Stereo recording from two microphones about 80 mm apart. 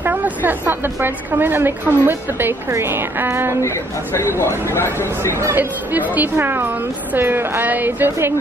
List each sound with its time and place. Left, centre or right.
0.0 s a woman's voice: right
3.6 s speech: left
5.4 s a woman's voice: right